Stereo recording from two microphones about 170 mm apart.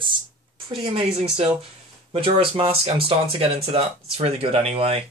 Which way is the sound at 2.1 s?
35° right (ahead or behind).